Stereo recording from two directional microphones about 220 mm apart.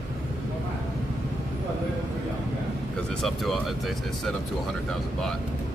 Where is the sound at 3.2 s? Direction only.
Centre (ahead or behind).